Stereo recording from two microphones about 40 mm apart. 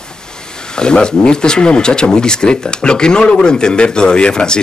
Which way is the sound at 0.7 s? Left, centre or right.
Left.